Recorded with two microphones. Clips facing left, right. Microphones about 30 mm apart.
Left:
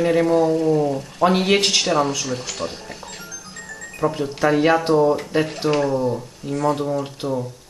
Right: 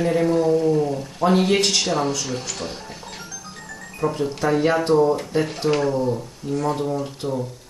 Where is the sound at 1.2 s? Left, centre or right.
Left.